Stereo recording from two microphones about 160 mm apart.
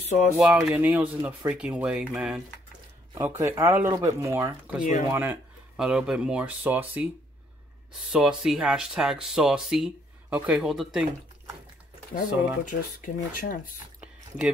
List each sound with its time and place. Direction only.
0.0 s speech: 50° left (ahead or behind)
0.4 s speech: 5° right (ahead or behind)
3.2 s speech: 15° right (ahead or behind)
8.1 s speech: 5° right (ahead or behind)
12.6 s speech: 55° left (ahead or behind)